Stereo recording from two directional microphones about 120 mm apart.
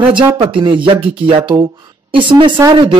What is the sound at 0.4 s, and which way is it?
Speech, 45° right (ahead or behind).